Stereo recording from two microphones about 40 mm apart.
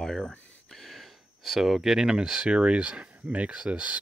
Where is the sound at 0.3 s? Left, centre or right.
Left.